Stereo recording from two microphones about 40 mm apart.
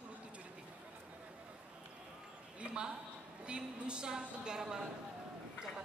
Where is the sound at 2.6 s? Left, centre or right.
Right.